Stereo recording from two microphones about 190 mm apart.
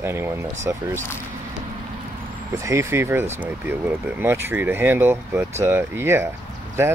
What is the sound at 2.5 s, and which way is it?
Speech, 15° right (ahead or behind).